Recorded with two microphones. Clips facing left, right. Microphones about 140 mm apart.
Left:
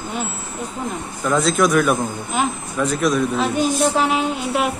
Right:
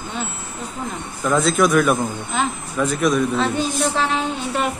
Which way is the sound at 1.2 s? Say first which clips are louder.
Even; centre (ahead or behind).